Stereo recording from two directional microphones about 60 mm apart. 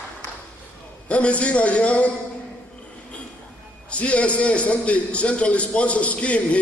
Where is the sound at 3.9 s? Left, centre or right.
Centre.